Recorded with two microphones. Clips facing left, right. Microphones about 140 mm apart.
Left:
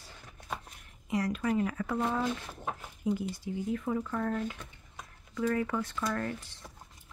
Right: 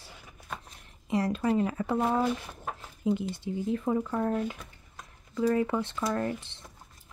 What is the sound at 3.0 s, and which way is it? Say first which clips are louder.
Speech: right 4 dB; 25° right (ahead or behind).